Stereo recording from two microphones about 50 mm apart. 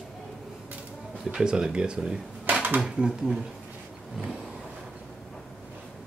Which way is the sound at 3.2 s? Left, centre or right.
Centre.